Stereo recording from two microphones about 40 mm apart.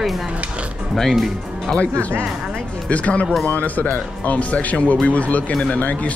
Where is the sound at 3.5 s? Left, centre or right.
Left.